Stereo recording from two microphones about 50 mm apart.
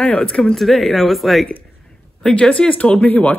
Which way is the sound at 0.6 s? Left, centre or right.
Centre.